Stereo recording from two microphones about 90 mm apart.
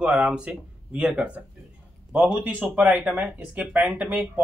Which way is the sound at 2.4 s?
20° right (ahead or behind).